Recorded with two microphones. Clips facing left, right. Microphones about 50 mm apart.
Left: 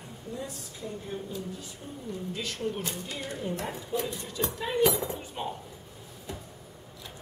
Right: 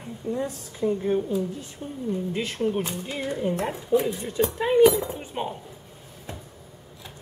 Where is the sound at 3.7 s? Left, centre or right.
Centre.